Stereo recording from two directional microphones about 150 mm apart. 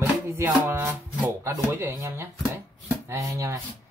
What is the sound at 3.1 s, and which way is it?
Speech, 20° right (ahead or behind).